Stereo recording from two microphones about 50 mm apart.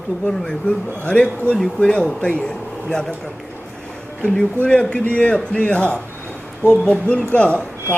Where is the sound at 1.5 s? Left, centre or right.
Right.